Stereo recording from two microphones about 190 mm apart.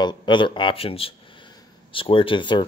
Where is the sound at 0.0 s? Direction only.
25° left (ahead or behind).